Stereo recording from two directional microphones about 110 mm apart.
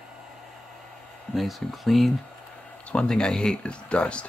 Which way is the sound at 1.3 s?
Centre (ahead or behind).